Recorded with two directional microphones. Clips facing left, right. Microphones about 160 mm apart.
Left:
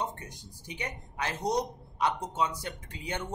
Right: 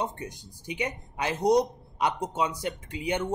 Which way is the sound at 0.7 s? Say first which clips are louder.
Right 7 dB; 15° right (ahead or behind).